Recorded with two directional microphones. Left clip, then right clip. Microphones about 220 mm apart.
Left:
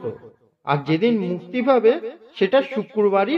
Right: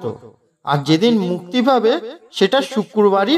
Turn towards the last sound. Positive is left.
turn(degrees=-20)  # may be behind; listen again after turning